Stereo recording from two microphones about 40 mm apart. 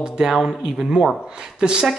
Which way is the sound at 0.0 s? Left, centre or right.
Centre.